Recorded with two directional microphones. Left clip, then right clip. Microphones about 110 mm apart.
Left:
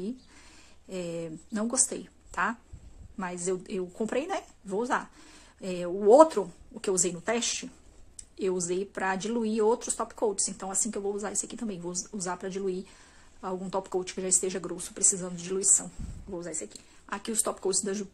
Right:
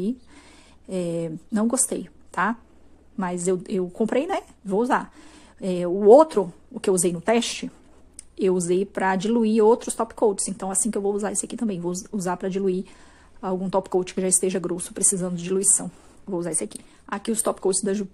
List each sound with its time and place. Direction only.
0.8 s a woman's voice: 50° right (ahead or behind)